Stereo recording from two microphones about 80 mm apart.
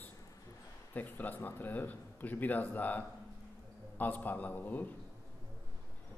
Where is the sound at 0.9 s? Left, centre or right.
Left.